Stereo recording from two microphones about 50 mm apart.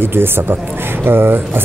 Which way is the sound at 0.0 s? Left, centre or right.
Right.